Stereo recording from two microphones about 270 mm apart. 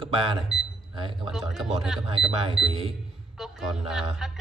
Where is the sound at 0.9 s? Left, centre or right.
Centre.